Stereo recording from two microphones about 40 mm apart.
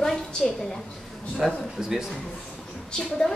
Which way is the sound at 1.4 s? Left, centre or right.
Centre.